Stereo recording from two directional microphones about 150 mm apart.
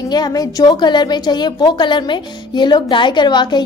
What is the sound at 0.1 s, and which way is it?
A woman's voice, 25° left (ahead or behind).